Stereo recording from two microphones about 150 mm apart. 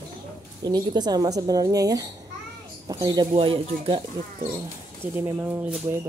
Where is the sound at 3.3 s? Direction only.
35° right (ahead or behind).